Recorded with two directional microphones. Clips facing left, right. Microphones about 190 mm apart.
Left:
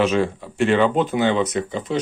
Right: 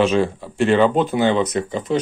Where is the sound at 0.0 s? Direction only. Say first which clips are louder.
Right 2 dB; 30° right (ahead or behind).